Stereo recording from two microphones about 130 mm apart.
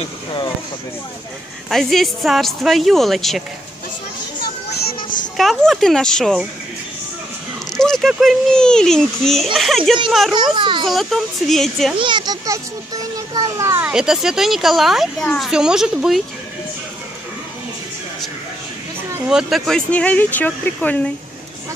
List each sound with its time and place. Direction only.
1.7 s speech: centre (ahead or behind)
5.4 s speech: centre (ahead or behind)
7.7 s a sound: 5° left (ahead or behind)
8.1 s speech: centre (ahead or behind)
10.3 s a child's voice: 35° right (ahead or behind)
10.9 s speech: centre (ahead or behind)
12.0 s a child's voice: 35° right (ahead or behind)
13.8 s speech: 5° right (ahead or behind)
19.2 s speech: 5° right (ahead or behind)